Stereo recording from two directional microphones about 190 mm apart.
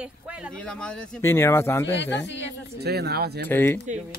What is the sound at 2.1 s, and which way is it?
Speech, 70° left (ahead or behind).